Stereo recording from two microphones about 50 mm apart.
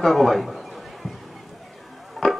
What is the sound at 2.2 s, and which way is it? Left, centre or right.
Music, centre.